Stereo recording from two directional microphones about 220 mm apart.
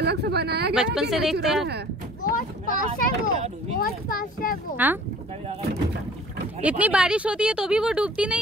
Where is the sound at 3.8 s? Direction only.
40° left (ahead or behind).